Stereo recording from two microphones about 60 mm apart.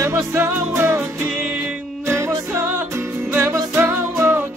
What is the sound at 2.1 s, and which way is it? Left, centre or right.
Music, right.